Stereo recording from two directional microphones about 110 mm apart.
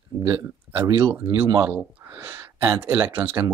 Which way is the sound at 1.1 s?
15° right (ahead or behind).